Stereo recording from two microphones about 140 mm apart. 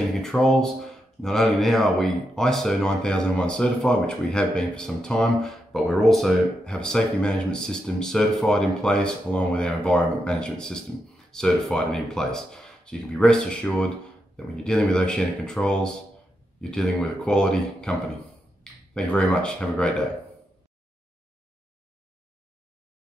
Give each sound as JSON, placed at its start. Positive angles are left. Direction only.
{"t": 0.2, "sound": "speech", "side_deg": 5}